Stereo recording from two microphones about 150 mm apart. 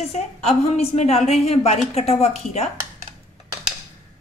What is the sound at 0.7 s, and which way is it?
A woman's voice, 45° left (ahead or behind).